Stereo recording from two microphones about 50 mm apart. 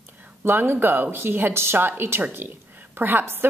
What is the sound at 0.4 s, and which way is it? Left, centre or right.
A woman's voice, right.